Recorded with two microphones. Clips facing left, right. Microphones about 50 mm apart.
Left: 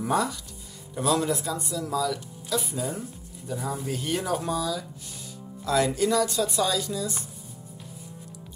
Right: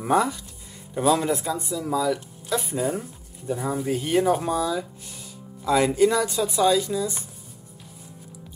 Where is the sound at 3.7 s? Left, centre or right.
Centre.